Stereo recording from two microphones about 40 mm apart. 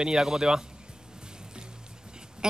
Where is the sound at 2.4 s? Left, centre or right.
Centre.